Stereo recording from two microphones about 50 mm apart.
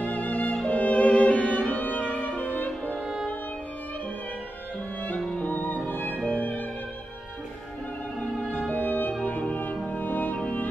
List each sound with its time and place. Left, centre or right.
0.1 s music: left
5.5 s music: left
8.6 s music: left